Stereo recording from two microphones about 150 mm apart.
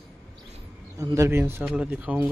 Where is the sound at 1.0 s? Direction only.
20° right (ahead or behind).